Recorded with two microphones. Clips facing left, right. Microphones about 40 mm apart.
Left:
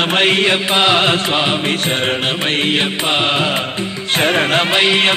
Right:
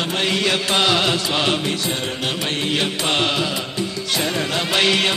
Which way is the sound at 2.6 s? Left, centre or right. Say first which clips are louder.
Left 5 dB; left.